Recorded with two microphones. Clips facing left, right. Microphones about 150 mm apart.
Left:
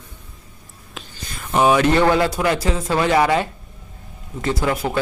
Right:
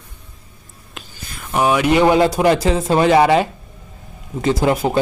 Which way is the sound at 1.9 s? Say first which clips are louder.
Right 3 dB; 15° right (ahead or behind).